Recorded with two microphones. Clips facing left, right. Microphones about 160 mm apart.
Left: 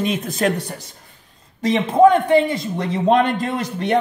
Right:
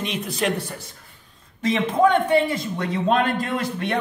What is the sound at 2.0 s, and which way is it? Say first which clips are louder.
A man's voice: left 6 dB; 35° left (ahead or behind).